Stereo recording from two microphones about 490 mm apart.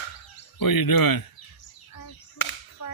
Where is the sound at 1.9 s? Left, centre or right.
Left.